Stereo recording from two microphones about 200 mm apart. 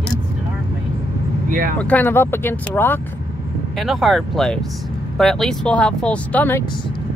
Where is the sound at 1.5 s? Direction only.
45° right (ahead or behind).